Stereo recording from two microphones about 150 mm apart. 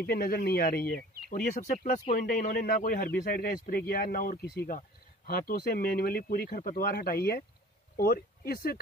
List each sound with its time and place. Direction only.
0.0 s speech: 90° left
1.3 s a man's voice: 70° left (ahead or behind); by 8.7 s 90° left